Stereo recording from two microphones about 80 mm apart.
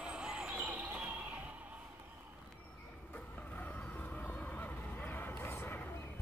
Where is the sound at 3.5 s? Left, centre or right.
Centre.